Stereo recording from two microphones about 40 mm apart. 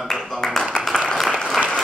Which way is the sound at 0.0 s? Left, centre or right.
Centre.